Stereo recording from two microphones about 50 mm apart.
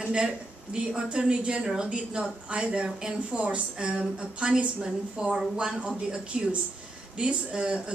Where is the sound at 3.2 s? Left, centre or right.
Right.